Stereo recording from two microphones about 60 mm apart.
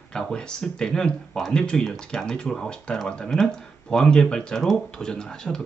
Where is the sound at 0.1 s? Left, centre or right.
Centre.